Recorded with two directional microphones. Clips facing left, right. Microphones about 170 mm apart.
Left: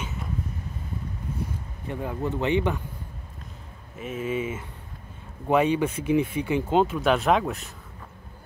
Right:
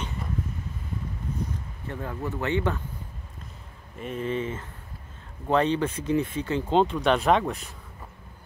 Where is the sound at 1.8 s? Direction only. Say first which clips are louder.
Left 3 dB; 15° left (ahead or behind).